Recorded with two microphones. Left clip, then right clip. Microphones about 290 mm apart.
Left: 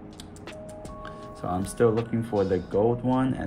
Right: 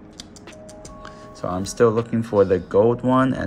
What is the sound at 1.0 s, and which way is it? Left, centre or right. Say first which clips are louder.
Music: right 5 dB; centre.